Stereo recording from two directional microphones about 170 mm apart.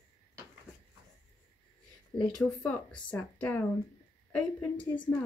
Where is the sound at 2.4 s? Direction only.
5° left (ahead or behind).